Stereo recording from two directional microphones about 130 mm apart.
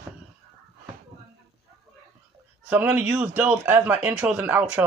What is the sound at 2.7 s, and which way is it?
Speech, 10° right (ahead or behind).